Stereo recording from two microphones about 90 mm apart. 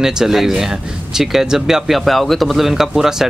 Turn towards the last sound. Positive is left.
turn(degrees=-5)  # may be behind; listen again after turning